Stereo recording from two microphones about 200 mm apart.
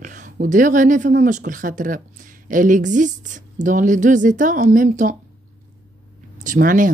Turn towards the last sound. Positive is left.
turn(degrees=-40)  # may be behind; listen again after turning